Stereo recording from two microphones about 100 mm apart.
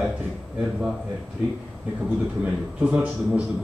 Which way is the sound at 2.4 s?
15° right (ahead or behind).